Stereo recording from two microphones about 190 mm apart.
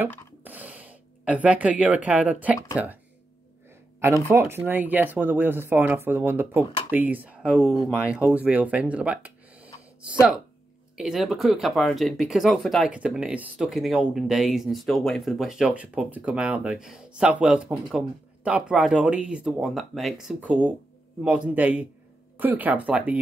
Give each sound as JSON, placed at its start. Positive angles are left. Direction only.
{"t": 0.4, "sound": "gasp", "side_deg": -10}
{"t": 2.0, "sound": "speech", "side_deg": -5}
{"t": 4.0, "sound": "speech", "side_deg": -15}
{"t": 11.0, "sound": "speech", "side_deg": 0}